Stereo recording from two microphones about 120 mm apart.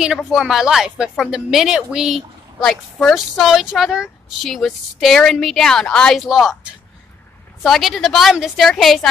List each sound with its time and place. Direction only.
0.0 s a woman's voice: 5° right (ahead or behind)
7.6 s a woman's voice: centre (ahead or behind)